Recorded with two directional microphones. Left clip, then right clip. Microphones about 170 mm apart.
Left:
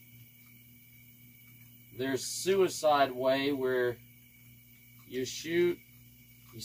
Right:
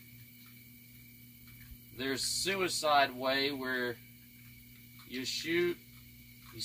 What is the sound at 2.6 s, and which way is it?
Speech, 20° right (ahead or behind).